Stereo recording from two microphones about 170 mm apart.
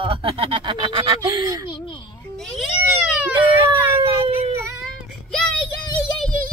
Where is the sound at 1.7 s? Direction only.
30° left (ahead or behind).